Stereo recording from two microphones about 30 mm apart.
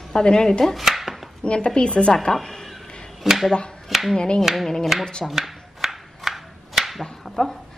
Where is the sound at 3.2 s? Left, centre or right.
Centre.